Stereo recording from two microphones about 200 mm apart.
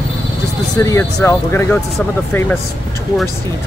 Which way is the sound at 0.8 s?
15° left (ahead or behind).